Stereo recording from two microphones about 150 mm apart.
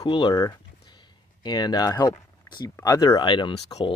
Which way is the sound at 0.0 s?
30° left (ahead or behind).